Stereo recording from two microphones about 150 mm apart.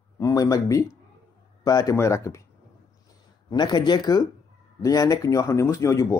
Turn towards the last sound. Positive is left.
turn(degrees=20)  # may be behind; listen again after turning